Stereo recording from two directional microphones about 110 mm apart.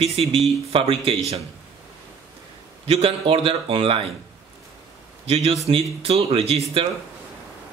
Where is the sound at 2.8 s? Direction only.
60° right (ahead or behind).